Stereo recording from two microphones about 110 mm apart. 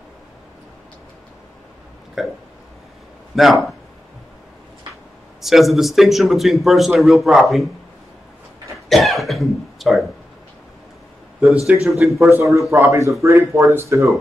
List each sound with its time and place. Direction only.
2.2 s a man's voice: centre (ahead or behind)
3.3 s a man's voice: centre (ahead or behind)
5.4 s a man's voice: centre (ahead or behind)
8.8 s speech: centre (ahead or behind)
11.6 s a man's voice: 5° right (ahead or behind)
12.2 s speech: 25° right (ahead or behind)